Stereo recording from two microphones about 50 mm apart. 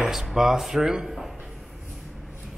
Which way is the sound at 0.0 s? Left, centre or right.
Centre.